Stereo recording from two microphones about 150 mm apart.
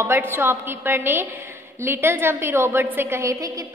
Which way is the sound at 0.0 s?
15° right (ahead or behind).